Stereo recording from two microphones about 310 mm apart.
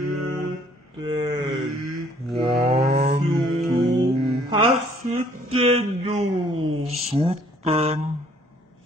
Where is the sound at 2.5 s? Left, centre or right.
Right.